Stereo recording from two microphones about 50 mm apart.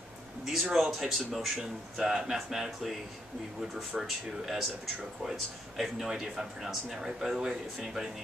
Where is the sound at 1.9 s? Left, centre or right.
Centre.